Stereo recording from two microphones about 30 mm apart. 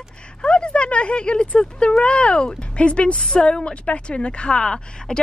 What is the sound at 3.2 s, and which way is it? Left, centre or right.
A woman's voice, left.